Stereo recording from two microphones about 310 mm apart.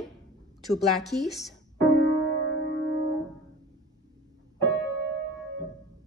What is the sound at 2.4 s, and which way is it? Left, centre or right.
Music, left.